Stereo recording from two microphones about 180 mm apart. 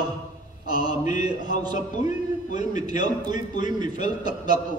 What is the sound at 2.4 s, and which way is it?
Speech, 45° left (ahead or behind).